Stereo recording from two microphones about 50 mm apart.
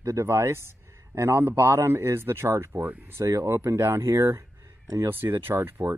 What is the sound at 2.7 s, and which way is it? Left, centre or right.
Speech, right.